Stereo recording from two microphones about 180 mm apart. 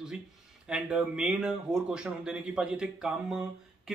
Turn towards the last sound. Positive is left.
turn(degrees=-5)  # may be behind; listen again after turning